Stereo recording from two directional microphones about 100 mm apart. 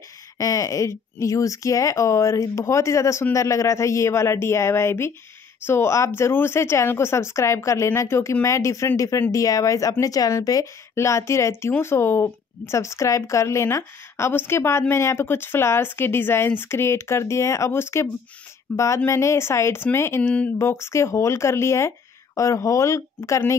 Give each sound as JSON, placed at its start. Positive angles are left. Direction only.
{"t": 0.4, "sound": "a woman's voice", "side_deg": 35}
{"t": 18.7, "sound": "a woman's voice", "side_deg": 15}
{"t": 19.0, "sound": "a woman's voice", "side_deg": 30}